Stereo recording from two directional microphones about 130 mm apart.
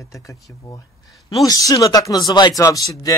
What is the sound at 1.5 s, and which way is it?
Speech, 25° left (ahead or behind).